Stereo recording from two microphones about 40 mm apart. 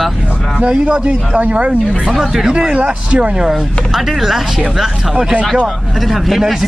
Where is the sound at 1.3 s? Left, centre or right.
Right.